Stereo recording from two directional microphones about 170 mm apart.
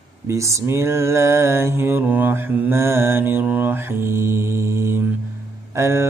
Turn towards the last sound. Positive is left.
turn(degrees=-15)  # may be behind; listen again after turning